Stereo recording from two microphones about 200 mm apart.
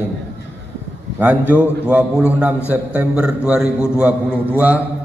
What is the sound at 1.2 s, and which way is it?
A man's voice, 10° right (ahead or behind).